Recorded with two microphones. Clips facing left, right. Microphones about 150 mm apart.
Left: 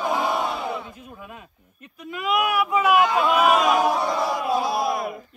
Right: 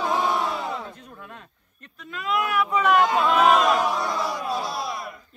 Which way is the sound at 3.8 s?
50° left (ahead or behind).